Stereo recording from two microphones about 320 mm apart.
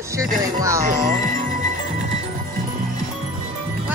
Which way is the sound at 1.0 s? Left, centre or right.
Right.